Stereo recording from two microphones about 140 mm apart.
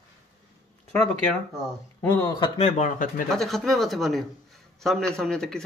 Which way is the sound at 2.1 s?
25° left (ahead or behind).